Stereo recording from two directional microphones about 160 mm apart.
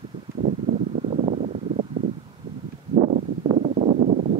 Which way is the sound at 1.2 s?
45° right (ahead or behind).